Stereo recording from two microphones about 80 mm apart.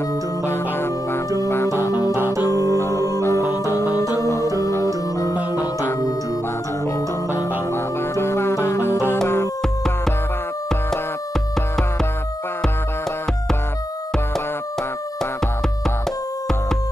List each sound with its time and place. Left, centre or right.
0.5 s music: left
2.7 s music: left
4.6 s organ: left
5.1 s music: left
7.5 s music: left